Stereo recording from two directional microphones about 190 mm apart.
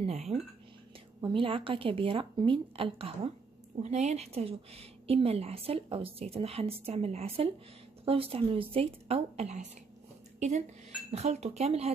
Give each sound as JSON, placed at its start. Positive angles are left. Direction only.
{"t": 0.0, "sound": "a woman's voice", "side_deg": -35}
{"t": 11.1, "sound": "a woman's voice", "side_deg": -35}